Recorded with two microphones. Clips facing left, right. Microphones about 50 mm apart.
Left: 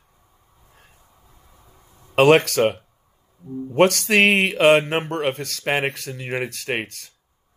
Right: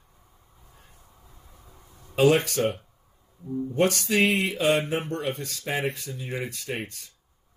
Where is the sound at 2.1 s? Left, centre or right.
Left.